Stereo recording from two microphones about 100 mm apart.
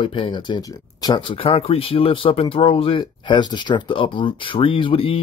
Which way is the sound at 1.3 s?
70° left (ahead or behind).